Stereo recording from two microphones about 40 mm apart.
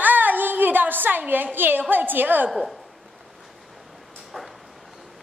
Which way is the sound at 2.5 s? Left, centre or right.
Centre.